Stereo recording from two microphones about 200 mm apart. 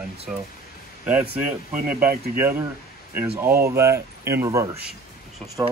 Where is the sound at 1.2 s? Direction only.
40° right (ahead or behind).